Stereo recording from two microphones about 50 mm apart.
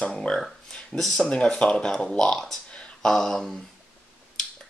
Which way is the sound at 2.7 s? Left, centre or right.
Centre.